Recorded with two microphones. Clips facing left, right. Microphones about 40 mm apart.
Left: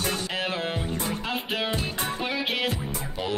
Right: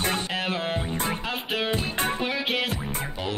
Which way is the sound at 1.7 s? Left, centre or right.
Right.